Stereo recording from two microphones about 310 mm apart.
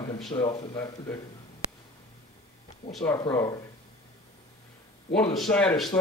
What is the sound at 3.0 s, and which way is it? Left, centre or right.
Speech, centre.